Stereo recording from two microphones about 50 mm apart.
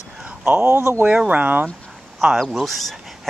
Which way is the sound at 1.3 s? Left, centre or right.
Right.